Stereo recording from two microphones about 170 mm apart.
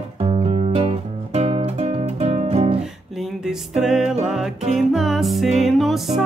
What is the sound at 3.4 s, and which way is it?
Music, 5° right (ahead or behind).